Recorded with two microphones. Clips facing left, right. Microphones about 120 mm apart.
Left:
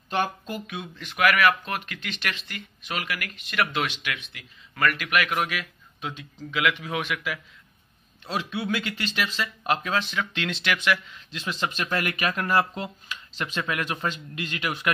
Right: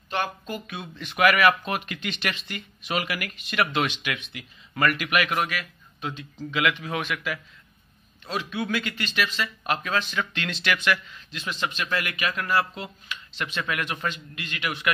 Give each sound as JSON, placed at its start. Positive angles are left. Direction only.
{"t": 0.5, "sound": "speech", "side_deg": 10}
{"t": 0.9, "sound": "speech", "side_deg": 0}
{"t": 5.5, "sound": "speech", "side_deg": 10}
{"t": 8.7, "sound": "speech", "side_deg": 25}
{"t": 11.3, "sound": "speech", "side_deg": 30}